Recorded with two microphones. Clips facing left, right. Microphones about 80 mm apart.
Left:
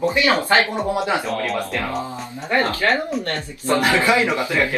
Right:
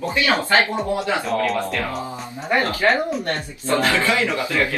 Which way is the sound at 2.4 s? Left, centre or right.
Centre.